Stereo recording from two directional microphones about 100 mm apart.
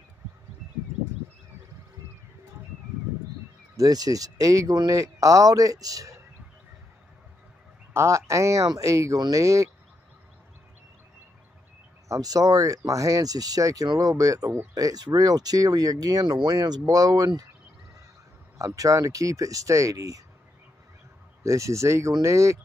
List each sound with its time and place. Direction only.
3.7 s speech: 40° right (ahead or behind)
7.9 s speech: 30° right (ahead or behind)
12.1 s speech: 35° right (ahead or behind)
18.8 s speech: 35° right (ahead or behind)
21.4 s speech: 30° right (ahead or behind)